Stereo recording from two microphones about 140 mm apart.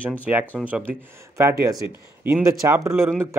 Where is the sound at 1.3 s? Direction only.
20° right (ahead or behind).